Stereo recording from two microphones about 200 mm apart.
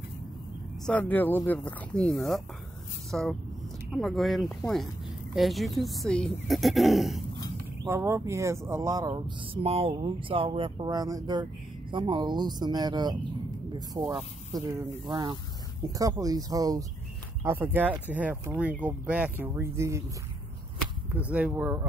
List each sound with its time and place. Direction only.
0.8 s speech: 10° left (ahead or behind)
7.8 s speech: 15° right (ahead or behind)
9.6 s speech: 30° right (ahead or behind); by 20.0 s 15° right (ahead or behind)
21.1 s speech: 5° right (ahead or behind)